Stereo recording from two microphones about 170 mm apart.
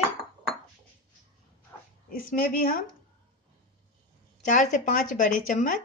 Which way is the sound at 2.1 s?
55° left (ahead or behind).